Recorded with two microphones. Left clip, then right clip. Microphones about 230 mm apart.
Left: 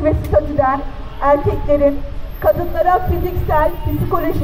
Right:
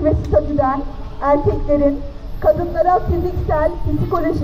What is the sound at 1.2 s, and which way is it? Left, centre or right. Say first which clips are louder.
Speech: left 1 dB; left.